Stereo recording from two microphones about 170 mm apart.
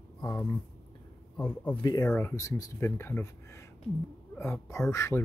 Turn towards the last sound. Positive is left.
turn(degrees=15)  # may be behind; listen again after turning